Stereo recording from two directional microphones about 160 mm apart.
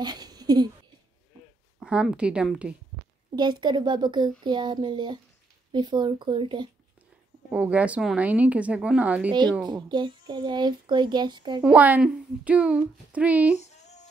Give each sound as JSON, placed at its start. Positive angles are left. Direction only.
{"t": 0.0, "sound": "speech", "side_deg": -25}
{"t": 1.8, "sound": "speech", "side_deg": -5}
{"t": 3.3, "sound": "speech", "side_deg": -30}
{"t": 7.5, "sound": "speech", "side_deg": -10}
{"t": 9.6, "sound": "speech", "side_deg": -25}
{"t": 11.6, "sound": "speech", "side_deg": -10}
{"t": 13.6, "sound": "female singing", "side_deg": 45}